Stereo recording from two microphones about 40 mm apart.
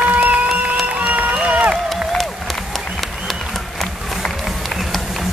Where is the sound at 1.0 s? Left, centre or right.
Right.